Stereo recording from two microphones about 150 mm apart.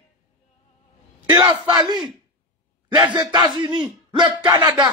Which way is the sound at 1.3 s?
30° right (ahead or behind).